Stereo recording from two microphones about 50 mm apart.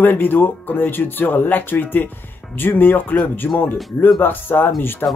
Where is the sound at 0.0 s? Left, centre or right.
Left.